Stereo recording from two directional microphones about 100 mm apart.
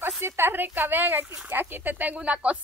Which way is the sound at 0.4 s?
20° right (ahead or behind).